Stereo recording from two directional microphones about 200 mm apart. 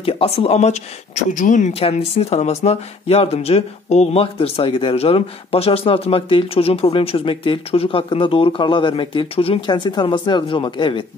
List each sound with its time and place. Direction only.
0.0 s speech: 30° left (ahead or behind)